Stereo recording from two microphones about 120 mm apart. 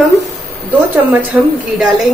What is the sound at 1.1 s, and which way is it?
Speech, 15° right (ahead or behind).